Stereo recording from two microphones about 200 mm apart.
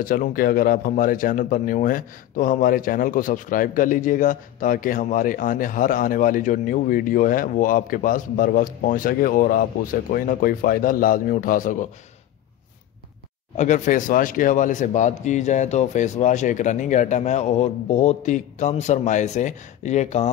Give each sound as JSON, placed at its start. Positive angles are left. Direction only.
{"t": 0.0, "sound": "speech", "side_deg": 45}
{"t": 13.6, "sound": "a man's voice", "side_deg": 35}